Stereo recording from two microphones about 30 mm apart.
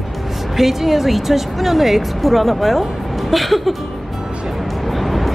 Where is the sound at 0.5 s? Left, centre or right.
Centre.